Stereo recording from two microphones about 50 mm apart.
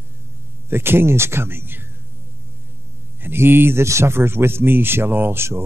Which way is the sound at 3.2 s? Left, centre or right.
Right.